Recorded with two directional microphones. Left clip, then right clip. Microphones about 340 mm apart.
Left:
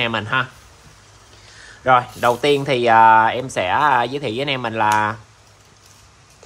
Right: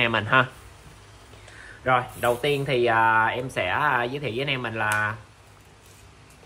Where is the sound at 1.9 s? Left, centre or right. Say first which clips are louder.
Left 7 dB; centre.